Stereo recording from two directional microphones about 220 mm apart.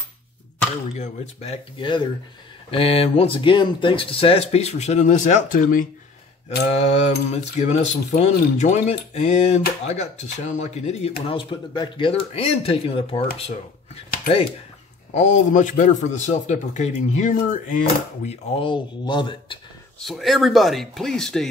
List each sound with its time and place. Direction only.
0.9 s speech: 30° left (ahead or behind)
6.7 s speech: 30° left (ahead or behind)
15.1 s speech: 35° left (ahead or behind)
18.6 s speech: 20° left (ahead or behind)
20.0 s speech: centre (ahead or behind)